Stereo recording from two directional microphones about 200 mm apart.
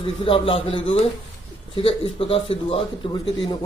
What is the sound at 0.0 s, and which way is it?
A man's voice, 25° left (ahead or behind).